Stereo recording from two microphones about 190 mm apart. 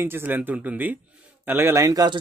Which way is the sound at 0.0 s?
10° right (ahead or behind).